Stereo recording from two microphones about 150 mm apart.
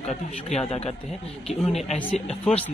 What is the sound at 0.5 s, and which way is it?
Speech, 50° left (ahead or behind).